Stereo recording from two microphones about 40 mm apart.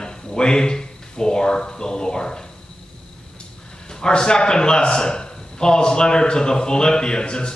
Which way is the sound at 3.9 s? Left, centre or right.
Centre.